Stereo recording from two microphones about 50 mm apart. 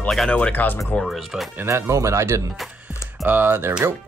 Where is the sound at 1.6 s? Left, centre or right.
Right.